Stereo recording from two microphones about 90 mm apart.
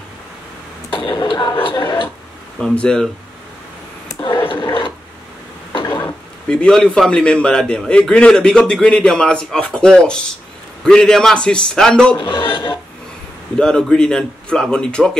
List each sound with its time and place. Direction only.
0.9 s a sound: 65° left (ahead or behind)
2.6 s a man's voice: 10° left (ahead or behind)
4.5 s a sound: 70° left (ahead or behind)
6.5 s a man's voice: 10° left (ahead or behind)
12.2 s speech: 70° left (ahead or behind)
13.6 s a man's voice: 5° left (ahead or behind)